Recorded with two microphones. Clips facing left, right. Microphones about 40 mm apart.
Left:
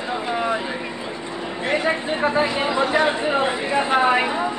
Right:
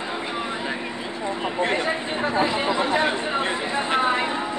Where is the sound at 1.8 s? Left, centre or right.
Centre.